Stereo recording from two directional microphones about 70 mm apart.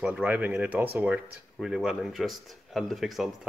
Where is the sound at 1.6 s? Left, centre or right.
Centre.